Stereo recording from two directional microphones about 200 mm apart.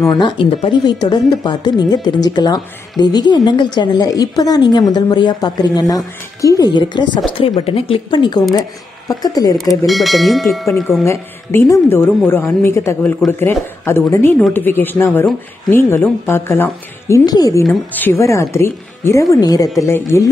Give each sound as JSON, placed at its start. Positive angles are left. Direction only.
{"t": 0.0, "sound": "a woman's voice", "side_deg": 20}
{"t": 9.8, "sound": "speech", "side_deg": 0}
{"t": 10.7, "sound": "a woman's voice", "side_deg": 15}